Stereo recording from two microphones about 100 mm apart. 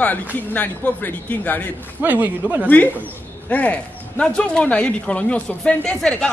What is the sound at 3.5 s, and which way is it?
A man's voice, 15° left (ahead or behind).